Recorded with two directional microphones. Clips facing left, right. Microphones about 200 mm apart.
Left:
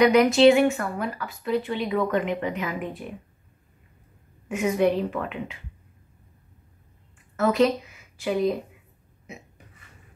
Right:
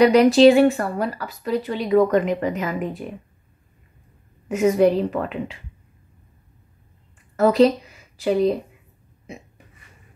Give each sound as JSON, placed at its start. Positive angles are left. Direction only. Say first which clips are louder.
{"t": 0.0, "sound": "speech", "louder": "right 4 dB", "side_deg": -35}
{"t": 4.5, "sound": "speech", "louder": "right 5 dB", "side_deg": -40}
{"t": 7.3, "sound": "a woman's voice", "louder": "right 5 dB", "side_deg": -35}